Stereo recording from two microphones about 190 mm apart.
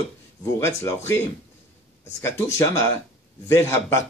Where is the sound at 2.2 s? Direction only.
15° left (ahead or behind).